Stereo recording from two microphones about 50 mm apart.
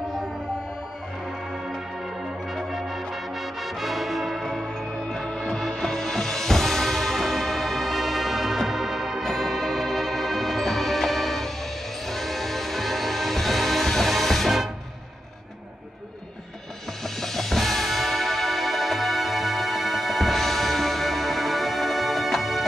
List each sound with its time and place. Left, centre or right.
2.5 s music: centre
5.3 s music: centre
17.0 s music: centre